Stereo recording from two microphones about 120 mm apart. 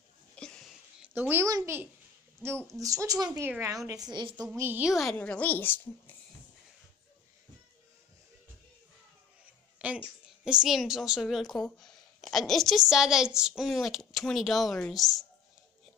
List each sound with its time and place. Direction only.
0.4 s a sound: 5° left (ahead or behind)
1.1 s a woman's voice: 15° right (ahead or behind)
1.5 s a woman's voice: 30° right (ahead or behind)
2.8 s speech: 30° right (ahead or behind)
3.3 s a woman's voice: 15° right (ahead or behind)
3.6 s a woman's voice: 30° right (ahead or behind)
4.6 s a woman's voice: 15° right (ahead or behind)
4.8 s a woman's voice: centre (ahead or behind)
5.1 s a woman's voice: 10° left (ahead or behind)
9.8 s a sound: 10° right (ahead or behind)
10.4 s a woman's voice: 5° right (ahead or behind)